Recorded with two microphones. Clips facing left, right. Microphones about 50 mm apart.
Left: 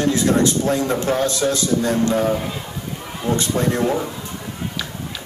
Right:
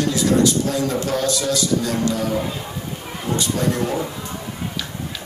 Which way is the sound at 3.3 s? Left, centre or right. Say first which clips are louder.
Left 1 dB; left.